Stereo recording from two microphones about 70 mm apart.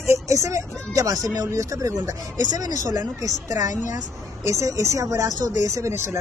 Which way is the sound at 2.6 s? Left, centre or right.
Right.